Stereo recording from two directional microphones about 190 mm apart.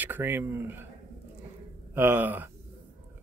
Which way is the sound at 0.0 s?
10° right (ahead or behind).